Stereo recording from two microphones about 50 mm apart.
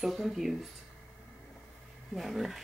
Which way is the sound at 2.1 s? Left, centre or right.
Centre.